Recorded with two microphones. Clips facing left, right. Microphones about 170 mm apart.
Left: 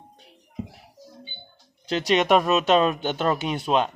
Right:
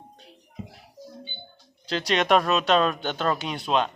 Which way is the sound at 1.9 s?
15° left (ahead or behind).